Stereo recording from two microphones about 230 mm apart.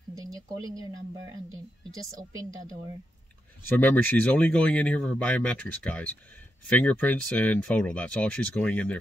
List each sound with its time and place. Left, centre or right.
0.1 s speech: centre
3.6 s speech: centre